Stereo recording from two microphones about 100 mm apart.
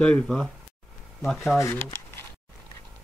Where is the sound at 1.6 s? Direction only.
25° left (ahead or behind).